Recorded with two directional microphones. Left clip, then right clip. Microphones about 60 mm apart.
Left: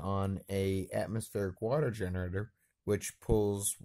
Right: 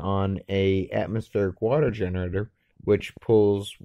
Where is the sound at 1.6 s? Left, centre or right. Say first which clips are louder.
Right 8 dB; left.